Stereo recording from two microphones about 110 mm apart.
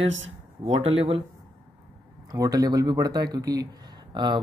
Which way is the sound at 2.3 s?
35° right (ahead or behind).